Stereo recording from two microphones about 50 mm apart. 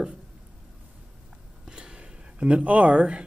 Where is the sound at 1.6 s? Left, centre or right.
Centre.